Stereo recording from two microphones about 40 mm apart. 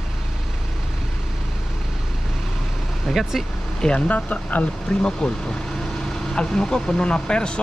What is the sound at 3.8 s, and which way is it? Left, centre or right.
Speech, left.